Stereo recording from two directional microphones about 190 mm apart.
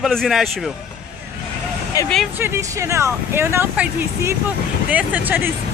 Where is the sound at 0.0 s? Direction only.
Centre (ahead or behind).